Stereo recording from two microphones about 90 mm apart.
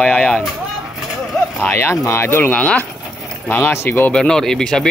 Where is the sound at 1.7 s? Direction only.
25° left (ahead or behind).